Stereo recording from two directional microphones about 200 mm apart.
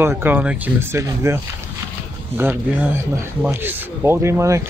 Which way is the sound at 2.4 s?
10° right (ahead or behind).